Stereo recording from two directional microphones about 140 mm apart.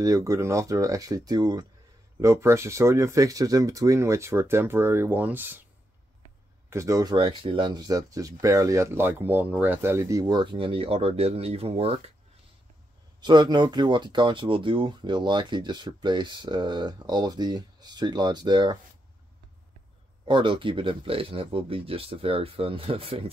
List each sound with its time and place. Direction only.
0.0 s speech: 25° right (ahead or behind)
6.7 s speech: 20° right (ahead or behind); by 12.0 s 45° right (ahead or behind)
13.2 s speech: 30° right (ahead or behind)
20.2 s speech: 35° right (ahead or behind)